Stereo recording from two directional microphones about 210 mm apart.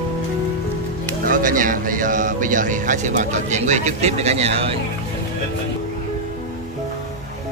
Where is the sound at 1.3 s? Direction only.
40° right (ahead or behind).